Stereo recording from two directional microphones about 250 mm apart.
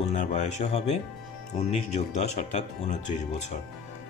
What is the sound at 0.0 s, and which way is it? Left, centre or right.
Speech, left.